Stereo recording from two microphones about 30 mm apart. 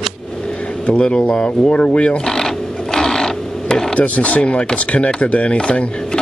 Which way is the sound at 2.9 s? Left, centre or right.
Centre.